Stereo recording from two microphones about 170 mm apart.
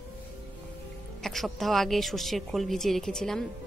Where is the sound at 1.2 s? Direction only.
Centre (ahead or behind).